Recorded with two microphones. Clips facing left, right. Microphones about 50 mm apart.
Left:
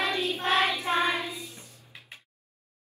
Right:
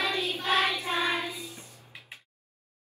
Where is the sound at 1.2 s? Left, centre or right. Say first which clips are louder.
Even; right.